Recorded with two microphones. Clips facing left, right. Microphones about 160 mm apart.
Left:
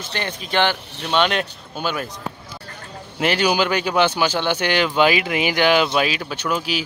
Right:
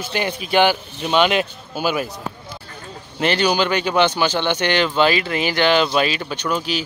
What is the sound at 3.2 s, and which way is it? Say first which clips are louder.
Speech: right 1 dB; 10° left (ahead or behind).